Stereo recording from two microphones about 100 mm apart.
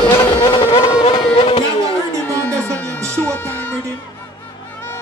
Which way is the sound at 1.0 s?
65° left (ahead or behind).